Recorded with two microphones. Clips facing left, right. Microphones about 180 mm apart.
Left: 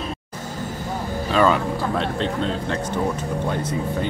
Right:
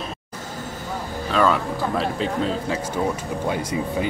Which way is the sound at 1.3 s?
Centre (ahead or behind).